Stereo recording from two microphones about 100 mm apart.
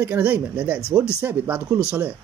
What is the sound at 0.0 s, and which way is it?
A man's voice, 15° right (ahead or behind).